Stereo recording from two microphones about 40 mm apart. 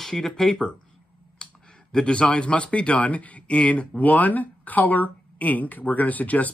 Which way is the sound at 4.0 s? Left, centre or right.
Left.